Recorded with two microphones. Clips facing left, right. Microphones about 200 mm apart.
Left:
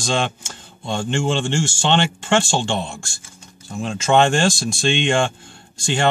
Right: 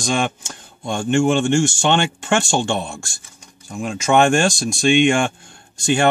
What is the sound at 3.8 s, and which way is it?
Speech, 15° right (ahead or behind).